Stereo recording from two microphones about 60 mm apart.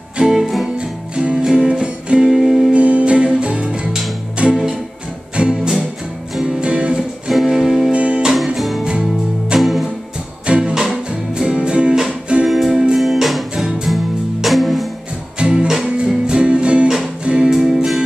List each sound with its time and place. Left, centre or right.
0.2 s music: centre
0.7 s music: centre
2.2 s music: centre
2.7 s music: right
7.2 s music: centre
7.9 s music: right
8.5 s music: centre
10.4 s music: centre
15.3 s music: centre